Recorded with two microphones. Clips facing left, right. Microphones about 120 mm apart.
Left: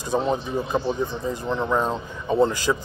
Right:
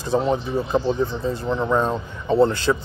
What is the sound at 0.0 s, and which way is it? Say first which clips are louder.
Speech: right 2 dB; 15° left (ahead or behind).